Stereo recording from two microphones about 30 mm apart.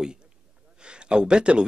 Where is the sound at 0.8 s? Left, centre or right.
Right.